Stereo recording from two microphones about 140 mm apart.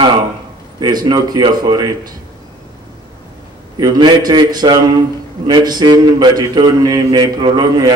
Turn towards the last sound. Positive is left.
turn(degrees=-30)  # may be behind; listen again after turning